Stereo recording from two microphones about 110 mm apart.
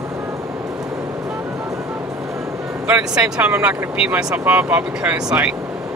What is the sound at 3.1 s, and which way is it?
Speech, 10° right (ahead or behind).